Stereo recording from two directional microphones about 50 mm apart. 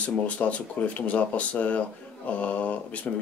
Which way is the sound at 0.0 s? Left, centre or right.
Left.